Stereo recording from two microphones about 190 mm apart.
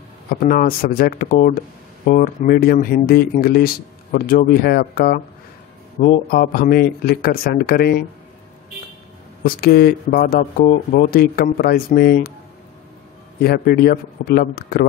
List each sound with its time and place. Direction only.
0.3 s speech: 50° left (ahead or behind)
9.4 s speech: 55° left (ahead or behind)
13.4 s speech: 50° left (ahead or behind)